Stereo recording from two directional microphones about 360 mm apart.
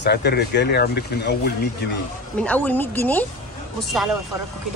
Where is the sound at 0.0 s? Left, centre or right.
Left.